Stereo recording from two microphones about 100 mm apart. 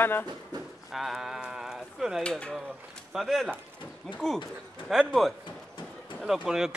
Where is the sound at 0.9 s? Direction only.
5° right (ahead or behind).